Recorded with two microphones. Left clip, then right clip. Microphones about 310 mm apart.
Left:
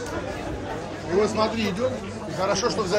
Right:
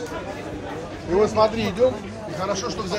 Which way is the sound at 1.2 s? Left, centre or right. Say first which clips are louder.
Right 4 dB; centre.